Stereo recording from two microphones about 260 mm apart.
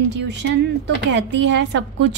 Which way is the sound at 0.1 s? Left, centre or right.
Right.